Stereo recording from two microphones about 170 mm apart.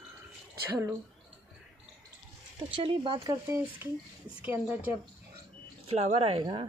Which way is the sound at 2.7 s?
30° right (ahead or behind).